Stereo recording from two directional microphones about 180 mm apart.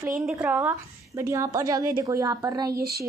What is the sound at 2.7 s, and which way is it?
Speech, 60° right (ahead or behind).